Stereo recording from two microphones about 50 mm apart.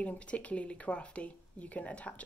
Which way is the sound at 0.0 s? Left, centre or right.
Left.